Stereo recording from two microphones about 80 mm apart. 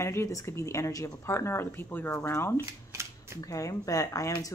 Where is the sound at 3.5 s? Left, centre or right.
Left.